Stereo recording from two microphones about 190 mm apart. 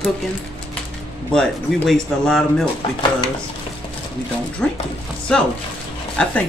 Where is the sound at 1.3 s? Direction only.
5° left (ahead or behind).